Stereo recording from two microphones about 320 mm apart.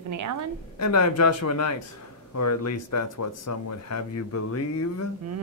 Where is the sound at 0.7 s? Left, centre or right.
Left.